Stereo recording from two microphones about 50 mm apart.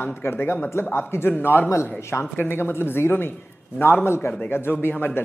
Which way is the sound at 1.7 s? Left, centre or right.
Left.